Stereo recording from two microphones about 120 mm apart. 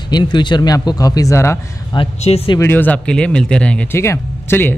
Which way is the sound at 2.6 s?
15° left (ahead or behind).